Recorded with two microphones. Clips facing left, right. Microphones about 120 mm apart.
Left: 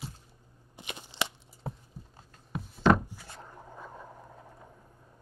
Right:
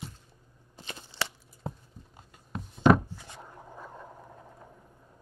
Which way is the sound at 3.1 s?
20° right (ahead or behind).